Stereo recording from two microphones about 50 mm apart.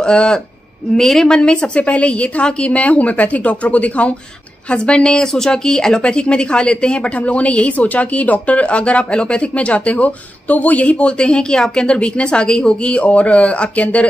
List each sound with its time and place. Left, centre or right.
0.0 s a woman's voice: centre